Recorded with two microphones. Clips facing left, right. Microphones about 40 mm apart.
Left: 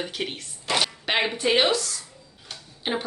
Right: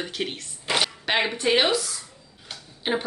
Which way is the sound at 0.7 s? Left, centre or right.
Centre.